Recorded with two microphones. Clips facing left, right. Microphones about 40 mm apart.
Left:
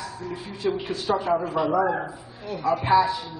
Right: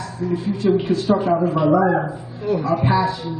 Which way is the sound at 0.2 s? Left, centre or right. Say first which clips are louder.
Right 9 dB; centre.